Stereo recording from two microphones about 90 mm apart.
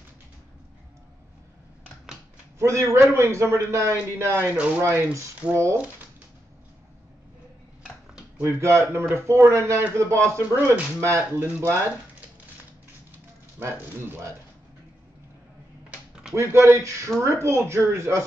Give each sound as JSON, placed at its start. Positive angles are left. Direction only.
{"t": 2.6, "sound": "a man's voice", "side_deg": -35}
{"t": 8.4, "sound": "a man's voice", "side_deg": -30}
{"t": 13.6, "sound": "speech", "side_deg": -25}
{"t": 15.9, "sound": "a sound", "side_deg": -5}
{"t": 16.3, "sound": "a man's voice", "side_deg": -30}